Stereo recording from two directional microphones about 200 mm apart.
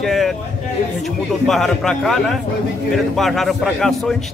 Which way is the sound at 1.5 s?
Centre (ahead or behind).